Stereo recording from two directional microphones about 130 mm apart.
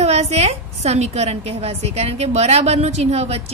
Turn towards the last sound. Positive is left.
turn(degrees=-55)  # may be behind; listen again after turning